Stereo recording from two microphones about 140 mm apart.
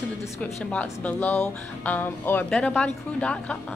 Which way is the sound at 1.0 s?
10° left (ahead or behind).